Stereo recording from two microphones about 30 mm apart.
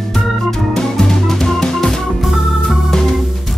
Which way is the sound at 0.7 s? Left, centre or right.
Centre.